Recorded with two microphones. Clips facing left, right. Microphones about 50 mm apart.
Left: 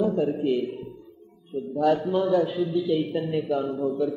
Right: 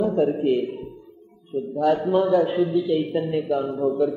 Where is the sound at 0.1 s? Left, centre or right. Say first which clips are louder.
Right 4 dB; centre.